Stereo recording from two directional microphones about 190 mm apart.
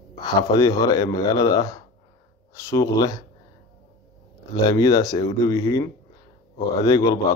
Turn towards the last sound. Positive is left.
turn(degrees=20)  # may be behind; listen again after turning